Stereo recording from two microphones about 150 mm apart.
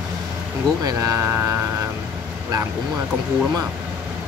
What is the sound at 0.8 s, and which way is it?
Speech, 20° right (ahead or behind).